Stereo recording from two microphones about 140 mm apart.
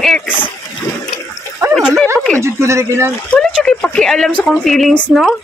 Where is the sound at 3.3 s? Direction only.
5° left (ahead or behind).